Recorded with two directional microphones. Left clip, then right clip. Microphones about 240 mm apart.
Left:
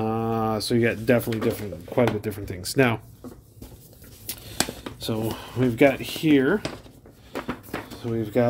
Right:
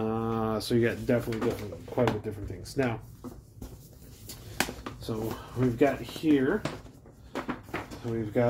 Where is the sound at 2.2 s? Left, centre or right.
Left.